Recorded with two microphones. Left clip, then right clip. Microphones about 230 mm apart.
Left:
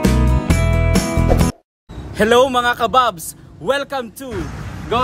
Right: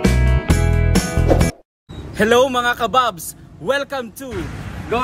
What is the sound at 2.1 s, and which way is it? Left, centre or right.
A man's voice, centre.